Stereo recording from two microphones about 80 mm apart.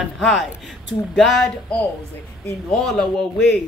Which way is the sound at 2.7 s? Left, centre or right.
Centre.